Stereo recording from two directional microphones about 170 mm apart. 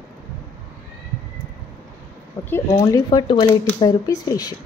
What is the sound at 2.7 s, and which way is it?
Speech, 20° left (ahead or behind).